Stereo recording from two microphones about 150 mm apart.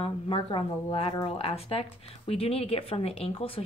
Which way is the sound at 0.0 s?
35° left (ahead or behind).